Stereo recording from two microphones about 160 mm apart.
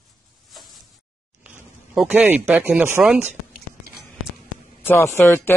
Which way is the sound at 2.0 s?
10° right (ahead or behind).